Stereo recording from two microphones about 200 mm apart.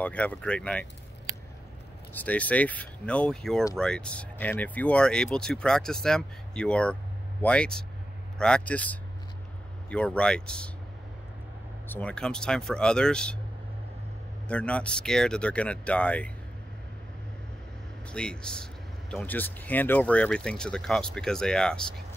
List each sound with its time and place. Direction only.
0.0 s speech: 5° left (ahead or behind)
2.1 s speech: 5° left (ahead or behind)
11.9 s speech: 5° left (ahead or behind)
14.5 s speech: 5° left (ahead or behind)
18.1 s speech: 5° left (ahead or behind)